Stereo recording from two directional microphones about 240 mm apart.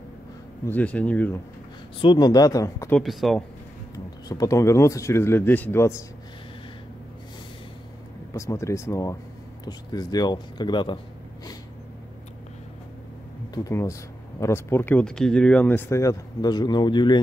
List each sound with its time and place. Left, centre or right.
0.7 s speech: centre
2.0 s speech: centre
3.0 s speech: centre
3.9 s speech: centre
8.3 s speech: centre
13.7 s speech: centre